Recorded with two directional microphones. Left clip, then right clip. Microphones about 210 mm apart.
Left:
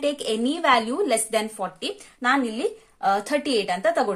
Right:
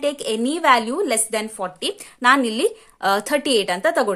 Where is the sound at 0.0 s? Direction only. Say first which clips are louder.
Right 2 dB; 15° right (ahead or behind).